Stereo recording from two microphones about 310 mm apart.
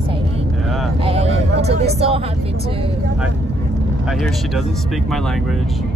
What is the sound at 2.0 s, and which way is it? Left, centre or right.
Speech, centre.